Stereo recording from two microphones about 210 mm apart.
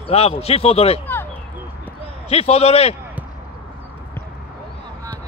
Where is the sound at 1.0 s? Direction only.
10° left (ahead or behind).